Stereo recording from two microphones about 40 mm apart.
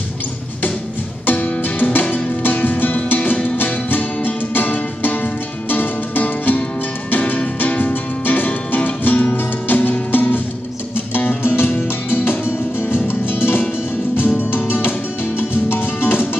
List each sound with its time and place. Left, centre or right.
1.2 s music: left
9.7 s music: left